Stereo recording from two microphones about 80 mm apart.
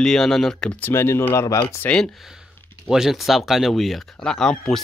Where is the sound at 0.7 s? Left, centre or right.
Left.